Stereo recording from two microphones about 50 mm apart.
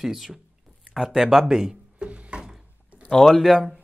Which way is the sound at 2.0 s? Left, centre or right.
Right.